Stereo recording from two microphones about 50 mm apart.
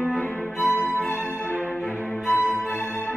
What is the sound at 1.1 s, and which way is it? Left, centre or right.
Music, left.